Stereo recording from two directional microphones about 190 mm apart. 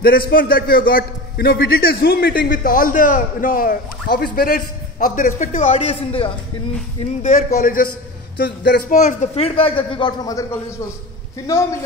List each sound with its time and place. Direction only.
0.0 s a man's voice: 50° left (ahead or behind); by 6.3 s 30° left (ahead or behind)
7.2 s a man's voice: 40° left (ahead or behind)
8.4 s speech: 65° left (ahead or behind)
8.8 s speech: 40° left (ahead or behind); by 10.6 s 20° left (ahead or behind)